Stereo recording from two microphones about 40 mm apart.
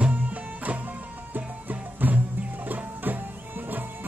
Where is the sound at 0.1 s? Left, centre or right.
Right.